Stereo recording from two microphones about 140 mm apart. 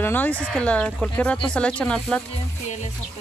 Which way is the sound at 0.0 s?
15° left (ahead or behind).